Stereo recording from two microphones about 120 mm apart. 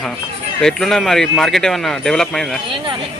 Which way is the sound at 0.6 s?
5° left (ahead or behind).